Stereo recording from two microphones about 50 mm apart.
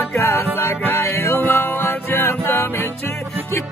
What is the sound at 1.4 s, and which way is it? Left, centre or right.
Music, left.